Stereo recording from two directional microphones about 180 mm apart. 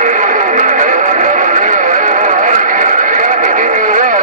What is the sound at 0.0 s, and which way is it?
Radio, 45° right (ahead or behind).